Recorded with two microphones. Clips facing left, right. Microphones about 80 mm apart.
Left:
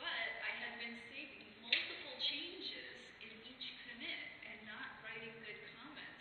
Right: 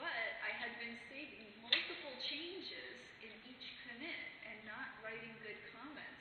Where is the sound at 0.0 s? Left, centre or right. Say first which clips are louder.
Right 1 dB; centre.